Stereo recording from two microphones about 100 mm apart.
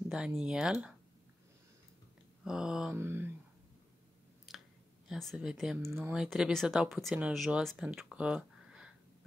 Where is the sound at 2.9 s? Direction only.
25° right (ahead or behind).